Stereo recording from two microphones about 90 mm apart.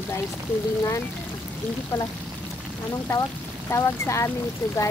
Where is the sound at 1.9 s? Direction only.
30° left (ahead or behind).